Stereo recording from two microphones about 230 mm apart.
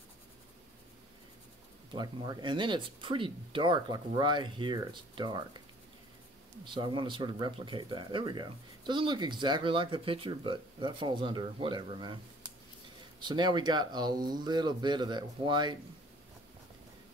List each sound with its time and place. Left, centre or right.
1.9 s speech: centre
6.6 s speech: right
13.2 s speech: centre